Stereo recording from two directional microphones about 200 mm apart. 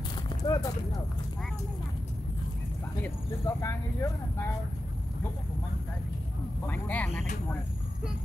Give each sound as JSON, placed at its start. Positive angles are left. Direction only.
{"t": 0.4, "sound": "clip-clop", "side_deg": 20}
{"t": 3.0, "sound": "speech", "side_deg": 15}
{"t": 6.7, "sound": "speech", "side_deg": 10}